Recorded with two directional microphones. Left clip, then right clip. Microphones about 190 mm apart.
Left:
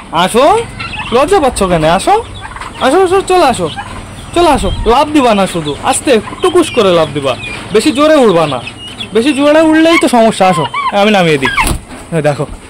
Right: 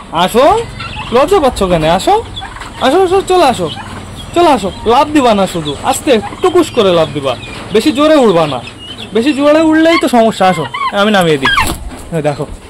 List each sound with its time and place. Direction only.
0.1 s speech: 15° left (ahead or behind)
12.1 s speech: 30° left (ahead or behind)